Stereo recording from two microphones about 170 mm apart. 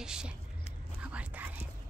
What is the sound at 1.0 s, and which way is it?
Whispering, 10° right (ahead or behind).